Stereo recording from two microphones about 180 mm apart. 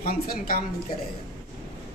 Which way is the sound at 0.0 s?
55° left (ahead or behind).